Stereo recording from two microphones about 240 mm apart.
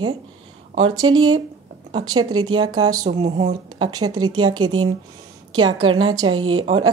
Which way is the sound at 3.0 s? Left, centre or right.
Right.